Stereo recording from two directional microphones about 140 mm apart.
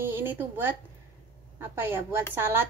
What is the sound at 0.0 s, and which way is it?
A woman's voice, 15° right (ahead or behind).